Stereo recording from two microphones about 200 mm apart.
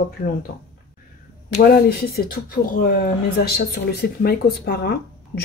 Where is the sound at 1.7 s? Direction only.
50° left (ahead or behind).